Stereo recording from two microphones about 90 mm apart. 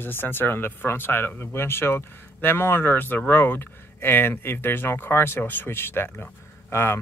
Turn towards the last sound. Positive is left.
turn(degrees=30)  # may be behind; listen again after turning